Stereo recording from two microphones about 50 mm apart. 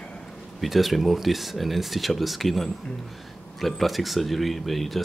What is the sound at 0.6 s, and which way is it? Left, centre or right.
Speech, centre.